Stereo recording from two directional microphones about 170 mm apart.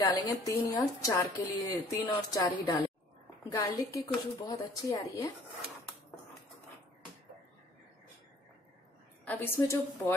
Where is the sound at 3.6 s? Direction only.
20° left (ahead or behind).